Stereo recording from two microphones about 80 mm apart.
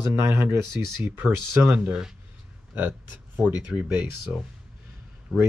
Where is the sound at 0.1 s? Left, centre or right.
Right.